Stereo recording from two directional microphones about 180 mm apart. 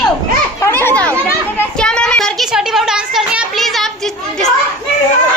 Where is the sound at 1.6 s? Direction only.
5° left (ahead or behind).